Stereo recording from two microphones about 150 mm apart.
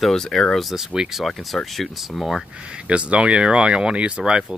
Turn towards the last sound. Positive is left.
turn(degrees=-5)  # may be behind; listen again after turning